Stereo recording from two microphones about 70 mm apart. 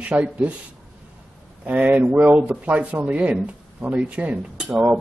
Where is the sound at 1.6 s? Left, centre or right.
Right.